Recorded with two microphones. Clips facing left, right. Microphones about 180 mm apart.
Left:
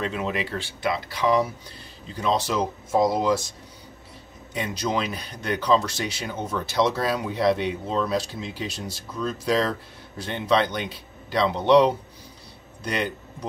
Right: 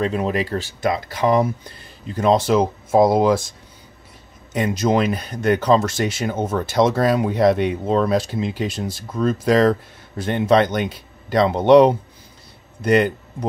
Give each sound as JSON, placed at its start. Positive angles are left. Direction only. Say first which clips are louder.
{"t": 0.0, "sound": "speech", "louder": "right 6 dB", "side_deg": -40}
{"t": 4.6, "sound": "speech", "louder": "right 8 dB", "side_deg": -50}